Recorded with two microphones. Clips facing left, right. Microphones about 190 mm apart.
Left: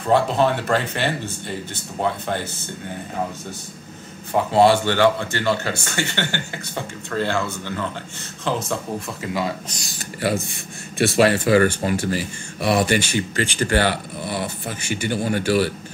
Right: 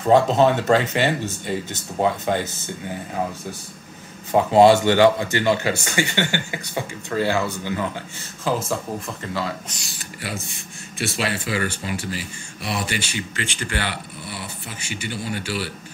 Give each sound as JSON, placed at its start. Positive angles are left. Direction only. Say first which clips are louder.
{"t": 0.0, "sound": "speech", "louder": "right 3 dB", "side_deg": -20}
{"t": 4.3, "sound": "speech", "louder": "right 2 dB", "side_deg": -15}
{"t": 9.2, "sound": "speech", "louder": "left 4 dB", "side_deg": 15}
{"t": 11.0, "sound": "speech", "louder": "left 9 dB", "side_deg": 50}